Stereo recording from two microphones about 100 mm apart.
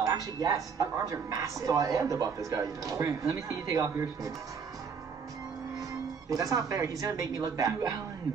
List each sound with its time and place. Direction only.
0.0 s speech: 35° right (ahead or behind)
6.3 s speech: 35° right (ahead or behind)